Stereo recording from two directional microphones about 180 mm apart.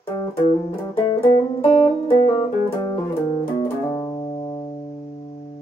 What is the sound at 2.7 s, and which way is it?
Music, 20° left (ahead or behind).